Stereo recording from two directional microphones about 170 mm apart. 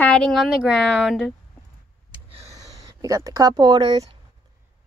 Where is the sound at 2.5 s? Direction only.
20° right (ahead or behind).